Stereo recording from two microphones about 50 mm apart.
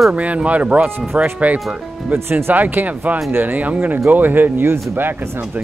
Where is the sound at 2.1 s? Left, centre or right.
Right.